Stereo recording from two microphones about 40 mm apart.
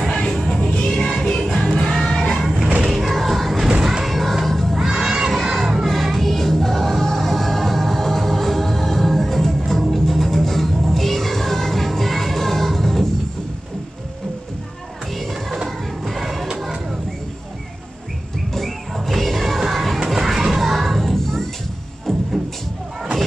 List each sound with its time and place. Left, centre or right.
0.3 s music: centre
2.3 s music: centre
3.6 s music: centre
4.0 s music: centre
4.7 s music: centre
5.3 s children playing: centre
5.9 s music: centre
16.1 s music: centre
18.9 s crowd: centre
20.2 s music: centre